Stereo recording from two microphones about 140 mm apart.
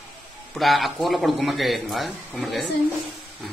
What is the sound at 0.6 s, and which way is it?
Speech, centre (ahead or behind).